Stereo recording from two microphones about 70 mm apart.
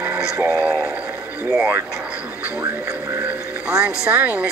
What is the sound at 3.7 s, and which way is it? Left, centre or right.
Speech, centre.